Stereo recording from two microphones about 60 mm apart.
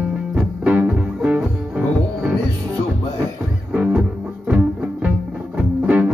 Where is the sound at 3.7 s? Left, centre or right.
Centre.